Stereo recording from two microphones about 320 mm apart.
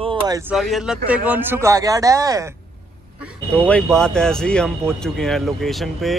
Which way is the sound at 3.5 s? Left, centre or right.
Centre.